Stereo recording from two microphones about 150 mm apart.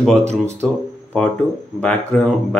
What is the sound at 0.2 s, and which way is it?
Speech, 45° right (ahead or behind).